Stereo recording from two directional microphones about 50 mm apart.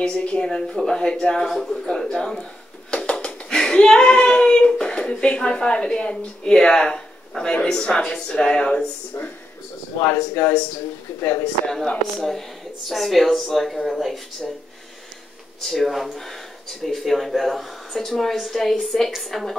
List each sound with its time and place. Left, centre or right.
0.0 s speech: centre
10.3 s speech: left
11.6 s speech: centre
15.6 s speech: centre